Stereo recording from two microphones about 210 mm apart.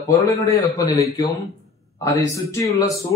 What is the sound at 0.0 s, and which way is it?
A man's voice, 15° left (ahead or behind).